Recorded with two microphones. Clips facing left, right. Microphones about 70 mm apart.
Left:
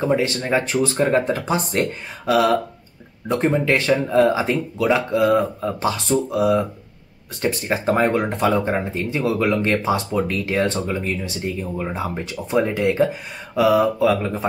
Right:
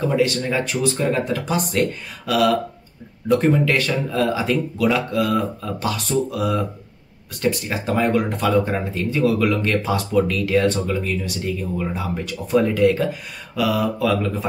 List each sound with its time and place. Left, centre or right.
0.0 s speech: left